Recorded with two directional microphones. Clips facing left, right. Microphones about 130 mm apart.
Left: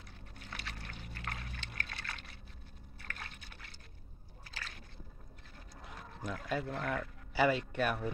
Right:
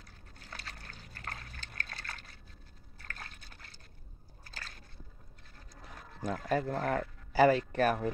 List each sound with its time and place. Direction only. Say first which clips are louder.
0.4 s water: left 1 dB; 40° right (ahead or behind)
3.0 s liquid: even; 40° right (ahead or behind)
4.6 s a sound: left 1 dB; 40° right (ahead or behind)
6.2 s speech: right 5 dB; 40° right (ahead or behind)